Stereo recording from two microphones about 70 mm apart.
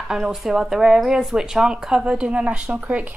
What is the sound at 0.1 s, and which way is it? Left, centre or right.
Speech, centre.